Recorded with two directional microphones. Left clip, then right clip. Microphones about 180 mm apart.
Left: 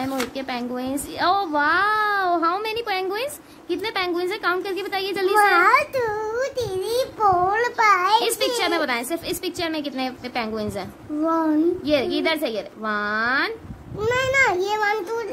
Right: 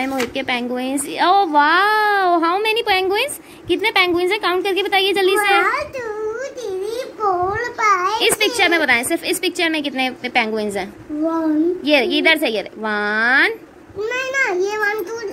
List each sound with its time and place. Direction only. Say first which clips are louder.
0.0 s a woman's voice: right 5 dB; 5° right (ahead or behind)
5.4 s a woman's voice: even; 35° left (ahead or behind)
7.2 s a child's voice: even; 30° left (ahead or behind)
8.2 s a woman's voice: right 6 dB; 5° right (ahead or behind)
11.8 s a woman's voice: right 6 dB; 10° right (ahead or behind)
14.0 s a child's voice: left 1 dB; 25° left (ahead or behind)